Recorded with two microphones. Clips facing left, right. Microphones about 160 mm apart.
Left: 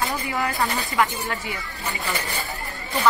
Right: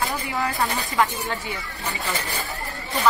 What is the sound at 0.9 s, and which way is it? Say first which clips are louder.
Speech: even; 20° right (ahead or behind).